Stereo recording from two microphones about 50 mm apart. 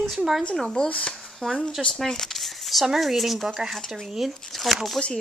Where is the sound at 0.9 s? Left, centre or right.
Left.